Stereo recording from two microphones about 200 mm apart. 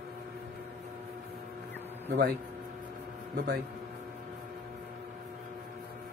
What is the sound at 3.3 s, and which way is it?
Speech, 50° right (ahead or behind).